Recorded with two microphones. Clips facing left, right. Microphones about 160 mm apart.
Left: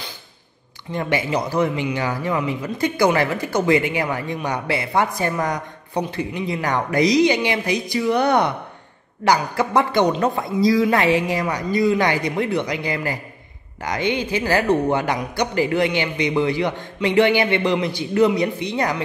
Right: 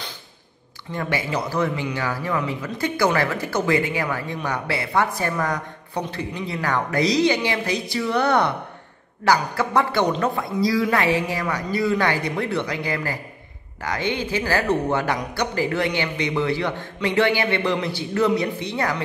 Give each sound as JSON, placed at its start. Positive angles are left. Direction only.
{"t": 0.9, "sound": "a man's voice", "side_deg": 20}